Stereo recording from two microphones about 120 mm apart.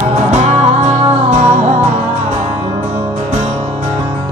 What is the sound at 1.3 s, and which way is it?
Music, 80° right.